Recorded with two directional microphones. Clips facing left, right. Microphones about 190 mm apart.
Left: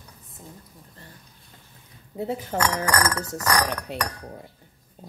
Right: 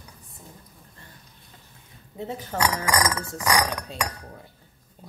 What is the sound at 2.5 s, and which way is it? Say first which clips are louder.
Speech: even; 15° right (ahead or behind).